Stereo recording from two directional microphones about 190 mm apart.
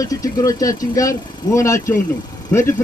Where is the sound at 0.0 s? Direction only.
20° left (ahead or behind).